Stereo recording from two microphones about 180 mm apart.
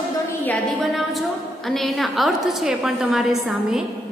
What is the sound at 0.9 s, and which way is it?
A woman's voice, centre (ahead or behind).